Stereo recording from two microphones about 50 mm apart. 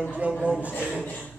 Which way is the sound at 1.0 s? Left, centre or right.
Left.